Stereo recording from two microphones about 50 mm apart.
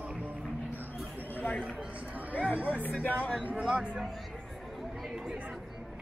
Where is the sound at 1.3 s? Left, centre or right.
Left.